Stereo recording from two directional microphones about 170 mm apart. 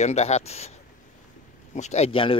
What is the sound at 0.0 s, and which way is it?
Speech, 40° left (ahead or behind).